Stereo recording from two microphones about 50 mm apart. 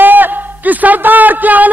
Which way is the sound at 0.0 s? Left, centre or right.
Right.